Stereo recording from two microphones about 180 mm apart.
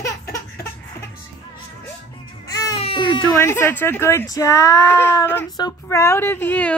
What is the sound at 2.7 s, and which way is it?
Baby cry, 30° left (ahead or behind).